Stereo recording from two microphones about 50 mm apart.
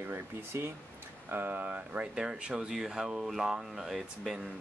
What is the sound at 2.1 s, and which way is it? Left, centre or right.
Speech, right.